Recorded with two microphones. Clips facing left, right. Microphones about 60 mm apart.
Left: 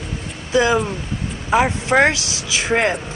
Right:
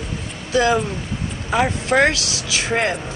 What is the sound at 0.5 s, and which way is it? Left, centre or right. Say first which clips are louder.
Speech: left 1 dB; centre.